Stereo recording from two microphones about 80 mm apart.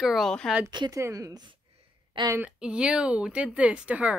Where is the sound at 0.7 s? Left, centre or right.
Right.